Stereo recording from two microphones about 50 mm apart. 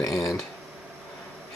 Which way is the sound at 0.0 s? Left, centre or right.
Centre.